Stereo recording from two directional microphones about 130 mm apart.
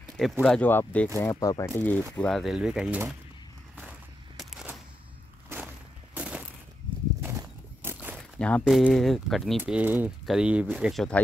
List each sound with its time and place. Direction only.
0.2 s speech: 5° left (ahead or behind)
1.2 s speech: 30° left (ahead or behind)
1.8 s speech: 15° left (ahead or behind)
2.1 s speech: 5° left (ahead or behind)
4.4 s a sound: 5° right (ahead or behind)
5.5 s a sound: 15° right (ahead or behind)
7.8 s a sound: 15° right (ahead or behind)
8.4 s speech: 10° left (ahead or behind)
9.6 s speech: 10° right (ahead or behind)